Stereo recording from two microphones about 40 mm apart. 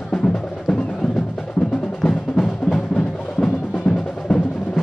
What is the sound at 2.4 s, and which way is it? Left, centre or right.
Music, centre.